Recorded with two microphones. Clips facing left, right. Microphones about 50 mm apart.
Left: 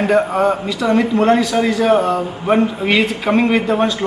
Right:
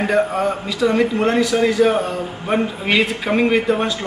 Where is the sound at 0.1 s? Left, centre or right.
Centre.